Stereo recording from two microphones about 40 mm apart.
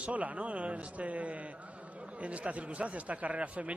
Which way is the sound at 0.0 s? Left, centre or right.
Right.